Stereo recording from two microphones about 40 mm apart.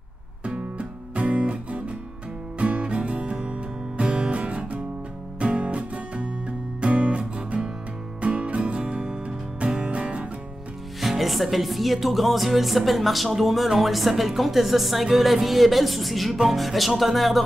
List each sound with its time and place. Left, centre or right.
0.5 s music: right
11.0 s music: centre